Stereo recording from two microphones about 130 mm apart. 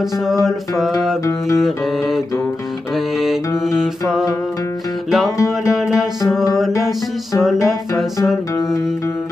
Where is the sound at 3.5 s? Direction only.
5° right (ahead or behind).